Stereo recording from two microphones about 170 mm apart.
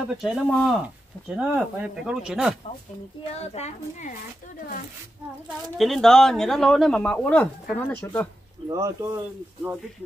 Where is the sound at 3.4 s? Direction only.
40° left (ahead or behind).